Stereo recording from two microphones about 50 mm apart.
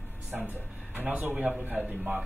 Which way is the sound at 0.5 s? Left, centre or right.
Right.